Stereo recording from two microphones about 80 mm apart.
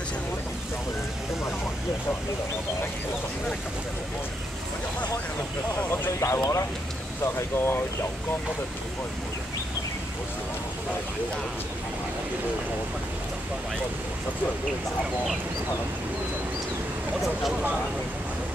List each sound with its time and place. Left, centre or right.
5.8 s speech: left